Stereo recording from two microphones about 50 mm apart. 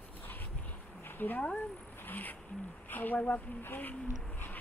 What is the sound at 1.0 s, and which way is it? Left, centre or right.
A woman's voice, left.